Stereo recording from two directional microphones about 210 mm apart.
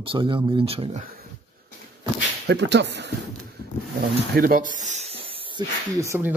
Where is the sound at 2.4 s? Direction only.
55° right (ahead or behind).